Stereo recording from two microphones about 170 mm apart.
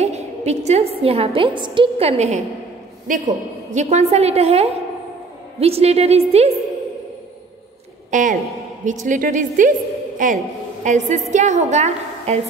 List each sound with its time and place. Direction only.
0.0 s a woman's voice: 40° right (ahead or behind)
3.7 s a woman's voice: 40° right (ahead or behind)
8.1 s a woman's voice: 50° right (ahead or behind)